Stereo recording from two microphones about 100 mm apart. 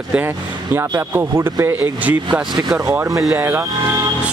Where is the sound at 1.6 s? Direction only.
15° right (ahead or behind).